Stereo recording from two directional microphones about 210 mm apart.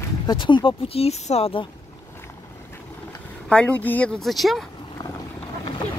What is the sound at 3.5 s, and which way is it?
Speech, 5° left (ahead or behind).